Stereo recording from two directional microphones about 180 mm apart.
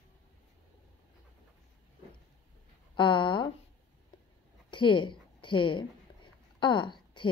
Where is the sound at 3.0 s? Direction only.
25° left (ahead or behind).